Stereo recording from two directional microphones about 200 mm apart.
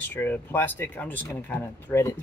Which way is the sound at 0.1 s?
10° left (ahead or behind).